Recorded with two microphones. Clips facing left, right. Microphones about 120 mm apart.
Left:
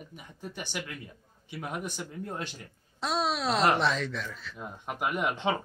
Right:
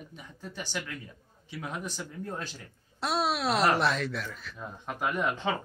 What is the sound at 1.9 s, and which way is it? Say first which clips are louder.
Speech: even; 15° left (ahead or behind).